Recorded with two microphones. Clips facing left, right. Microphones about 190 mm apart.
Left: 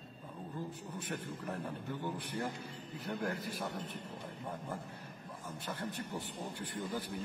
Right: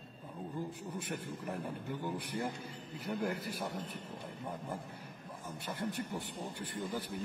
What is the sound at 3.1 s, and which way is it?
Speech, centre (ahead or behind).